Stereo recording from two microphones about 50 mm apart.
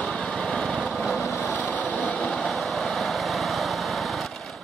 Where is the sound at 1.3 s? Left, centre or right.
Left.